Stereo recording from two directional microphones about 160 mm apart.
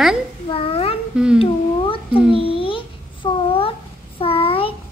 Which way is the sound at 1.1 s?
5° right (ahead or behind).